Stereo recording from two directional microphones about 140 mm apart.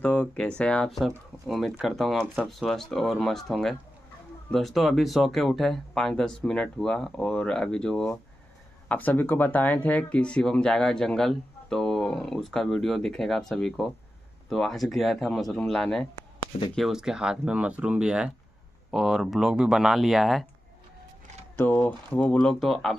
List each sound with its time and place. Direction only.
0.0 s speech: 10° left (ahead or behind)
21.5 s speech: 10° left (ahead or behind)